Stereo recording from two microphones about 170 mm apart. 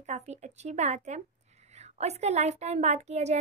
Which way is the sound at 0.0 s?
40° right (ahead or behind).